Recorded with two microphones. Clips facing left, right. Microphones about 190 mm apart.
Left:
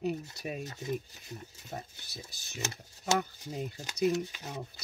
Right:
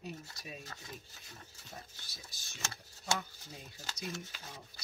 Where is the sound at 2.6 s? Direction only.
20° left (ahead or behind).